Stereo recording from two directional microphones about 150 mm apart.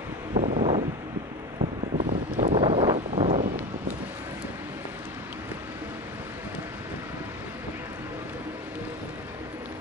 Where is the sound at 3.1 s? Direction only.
45° right (ahead or behind).